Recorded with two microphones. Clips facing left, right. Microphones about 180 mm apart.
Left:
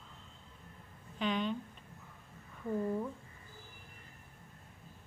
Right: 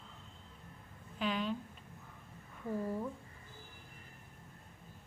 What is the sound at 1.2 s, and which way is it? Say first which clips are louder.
Speech: left 2 dB; 5° right (ahead or behind).